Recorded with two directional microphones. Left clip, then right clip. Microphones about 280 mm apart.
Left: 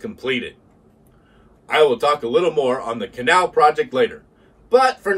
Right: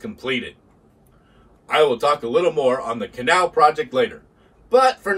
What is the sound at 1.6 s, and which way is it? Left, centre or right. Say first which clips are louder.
Speech: left 1 dB; centre.